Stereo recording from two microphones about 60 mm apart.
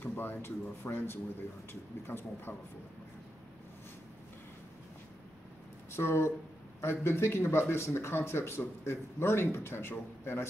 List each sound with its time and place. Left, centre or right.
0.0 s speech: left
5.9 s speech: left